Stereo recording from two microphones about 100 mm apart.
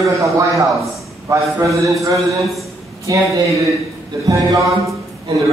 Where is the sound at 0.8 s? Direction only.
30° right (ahead or behind).